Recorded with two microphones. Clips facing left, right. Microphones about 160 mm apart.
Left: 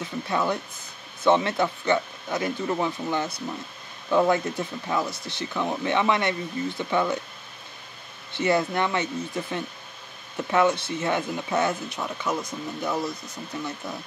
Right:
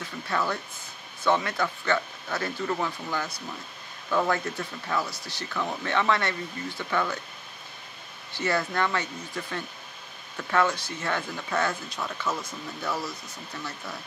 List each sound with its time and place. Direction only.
0.3 s speech: 20° left (ahead or behind)
8.3 s speech: 20° left (ahead or behind)